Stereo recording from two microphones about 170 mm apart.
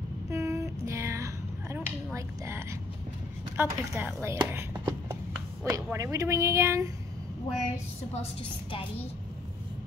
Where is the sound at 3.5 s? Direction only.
15° right (ahead or behind).